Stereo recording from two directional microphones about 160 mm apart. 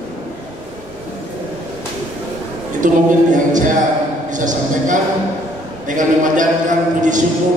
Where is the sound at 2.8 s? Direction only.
55° right (ahead or behind).